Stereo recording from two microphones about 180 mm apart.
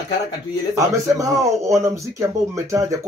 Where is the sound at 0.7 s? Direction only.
15° right (ahead or behind).